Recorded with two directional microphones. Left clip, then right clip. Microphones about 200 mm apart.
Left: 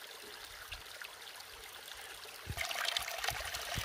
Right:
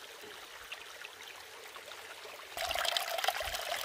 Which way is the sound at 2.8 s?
25° right (ahead or behind).